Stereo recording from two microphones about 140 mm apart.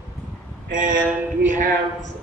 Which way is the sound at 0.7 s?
70° right (ahead or behind).